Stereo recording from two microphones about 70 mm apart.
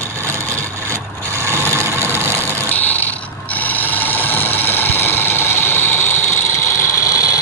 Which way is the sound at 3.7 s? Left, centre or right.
Left.